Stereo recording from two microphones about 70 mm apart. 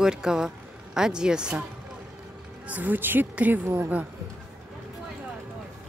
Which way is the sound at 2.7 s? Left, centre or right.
Right.